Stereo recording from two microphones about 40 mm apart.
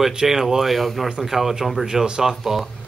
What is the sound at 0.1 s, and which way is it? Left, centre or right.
Speech, centre.